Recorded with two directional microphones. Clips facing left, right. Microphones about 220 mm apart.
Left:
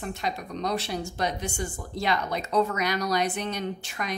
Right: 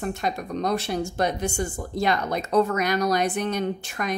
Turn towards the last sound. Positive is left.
turn(degrees=-50)  # may be behind; listen again after turning